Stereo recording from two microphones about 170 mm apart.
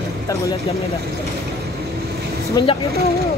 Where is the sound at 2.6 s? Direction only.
25° left (ahead or behind).